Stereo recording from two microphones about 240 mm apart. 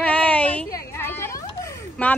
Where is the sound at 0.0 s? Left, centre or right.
Centre.